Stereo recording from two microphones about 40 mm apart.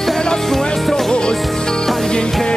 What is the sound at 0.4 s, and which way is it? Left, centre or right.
Music, centre.